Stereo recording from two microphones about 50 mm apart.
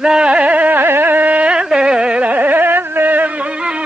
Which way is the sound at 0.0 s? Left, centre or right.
Centre.